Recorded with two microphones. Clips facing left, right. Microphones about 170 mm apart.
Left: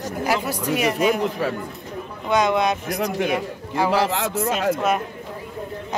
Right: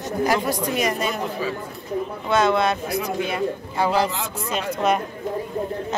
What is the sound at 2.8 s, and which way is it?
Speech, 75° left (ahead or behind).